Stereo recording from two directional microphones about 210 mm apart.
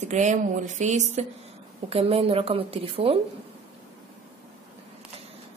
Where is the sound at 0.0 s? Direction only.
35° right (ahead or behind).